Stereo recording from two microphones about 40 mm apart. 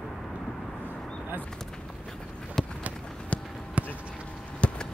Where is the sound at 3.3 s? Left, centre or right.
Left.